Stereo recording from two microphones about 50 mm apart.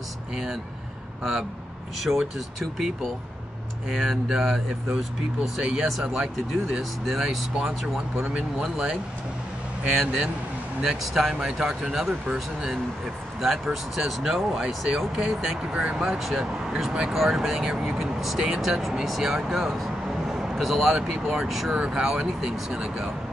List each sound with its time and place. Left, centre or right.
2.0 s speech: centre
8.3 s speech: centre
13.4 s speech: centre
15.7 s speech: right
16.1 s speech: centre
21.7 s speech: centre